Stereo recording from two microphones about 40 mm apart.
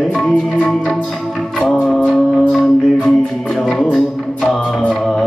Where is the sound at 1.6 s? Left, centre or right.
Left.